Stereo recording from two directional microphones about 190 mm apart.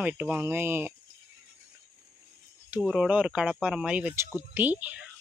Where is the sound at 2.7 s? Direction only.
Centre (ahead or behind).